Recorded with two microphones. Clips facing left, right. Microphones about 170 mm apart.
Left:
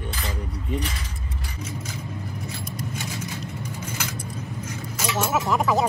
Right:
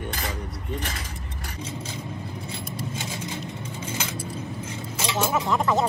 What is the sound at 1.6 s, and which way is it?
Vehicle, 30° right (ahead or behind).